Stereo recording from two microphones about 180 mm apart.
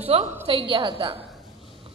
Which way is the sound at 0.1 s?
35° right (ahead or behind).